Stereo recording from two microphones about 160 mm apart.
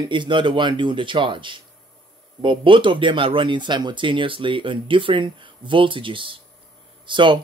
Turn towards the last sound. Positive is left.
turn(degrees=-30)  # may be behind; listen again after turning